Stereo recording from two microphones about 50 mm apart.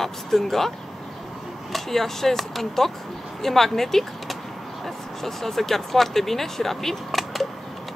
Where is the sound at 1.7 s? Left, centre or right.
Centre.